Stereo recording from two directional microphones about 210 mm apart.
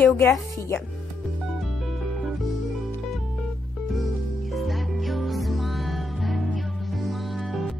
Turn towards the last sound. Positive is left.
turn(degrees=0)  # may be behind; listen again after turning